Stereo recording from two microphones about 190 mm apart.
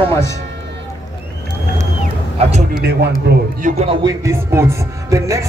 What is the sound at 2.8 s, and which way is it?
Speech, 60° right (ahead or behind).